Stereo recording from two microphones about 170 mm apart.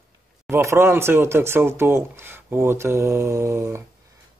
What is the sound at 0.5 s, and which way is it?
Speech, 15° right (ahead or behind).